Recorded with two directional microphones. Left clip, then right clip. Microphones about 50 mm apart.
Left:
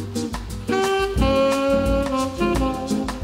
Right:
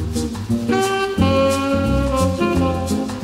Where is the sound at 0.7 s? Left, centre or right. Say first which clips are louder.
Right 1 dB; left.